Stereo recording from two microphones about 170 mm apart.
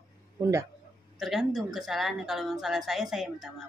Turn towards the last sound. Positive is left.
turn(degrees=0)  # may be behind; listen again after turning